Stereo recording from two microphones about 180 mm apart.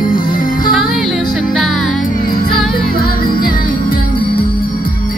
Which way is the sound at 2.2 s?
55° left (ahead or behind).